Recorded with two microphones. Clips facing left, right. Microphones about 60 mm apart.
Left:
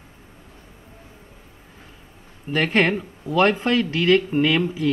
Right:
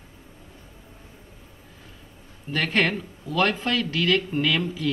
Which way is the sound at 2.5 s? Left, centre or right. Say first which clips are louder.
Left 4 dB; left.